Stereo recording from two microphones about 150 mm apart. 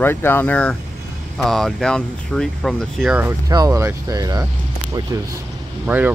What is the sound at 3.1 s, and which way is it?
Speech, 15° right (ahead or behind).